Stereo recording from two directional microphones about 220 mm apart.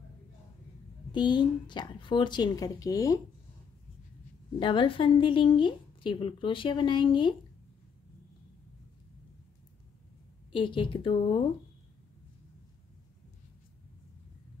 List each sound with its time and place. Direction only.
1.1 s a woman's voice: 20° left (ahead or behind)
4.6 s a woman's voice: 20° left (ahead or behind)
10.5 s a woman's voice: 20° left (ahead or behind)